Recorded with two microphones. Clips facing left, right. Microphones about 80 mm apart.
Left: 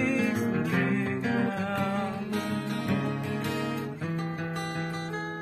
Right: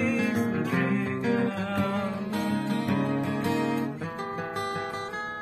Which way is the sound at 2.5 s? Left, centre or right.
Right.